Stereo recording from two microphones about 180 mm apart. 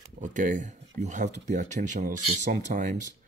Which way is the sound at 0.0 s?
45° right (ahead or behind).